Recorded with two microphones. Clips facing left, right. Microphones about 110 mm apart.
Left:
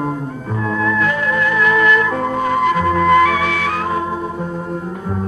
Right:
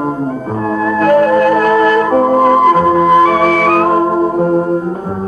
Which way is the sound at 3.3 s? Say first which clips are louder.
Right 8 dB; 45° right (ahead or behind).